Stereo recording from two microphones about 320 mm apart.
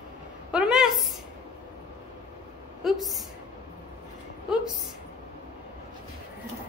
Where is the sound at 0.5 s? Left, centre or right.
Centre.